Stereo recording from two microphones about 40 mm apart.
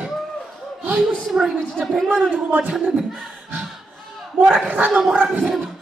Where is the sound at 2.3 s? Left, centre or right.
Right.